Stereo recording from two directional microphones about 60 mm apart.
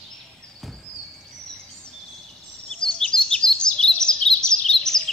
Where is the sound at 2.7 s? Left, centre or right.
Centre.